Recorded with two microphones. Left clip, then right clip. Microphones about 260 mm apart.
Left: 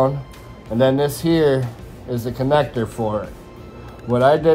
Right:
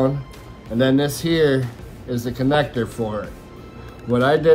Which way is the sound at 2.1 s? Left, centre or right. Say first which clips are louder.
Left 1 dB; left.